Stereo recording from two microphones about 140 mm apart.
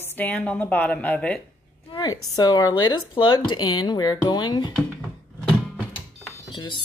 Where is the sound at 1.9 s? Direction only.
25° left (ahead or behind).